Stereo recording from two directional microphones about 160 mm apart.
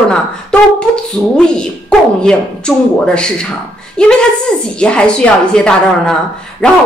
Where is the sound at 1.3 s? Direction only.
5° left (ahead or behind).